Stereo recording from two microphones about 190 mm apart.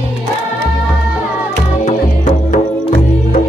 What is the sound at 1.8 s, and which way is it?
Music, 40° left (ahead or behind).